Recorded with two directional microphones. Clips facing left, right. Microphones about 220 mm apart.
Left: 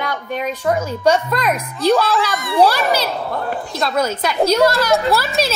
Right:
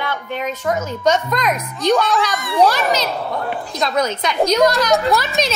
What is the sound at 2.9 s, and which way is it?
A woman's voice, 5° left (ahead or behind).